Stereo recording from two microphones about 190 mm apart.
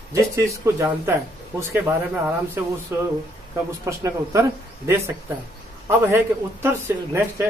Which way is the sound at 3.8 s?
15° right (ahead or behind).